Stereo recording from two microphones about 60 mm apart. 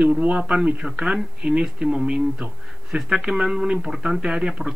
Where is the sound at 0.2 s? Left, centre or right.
Right.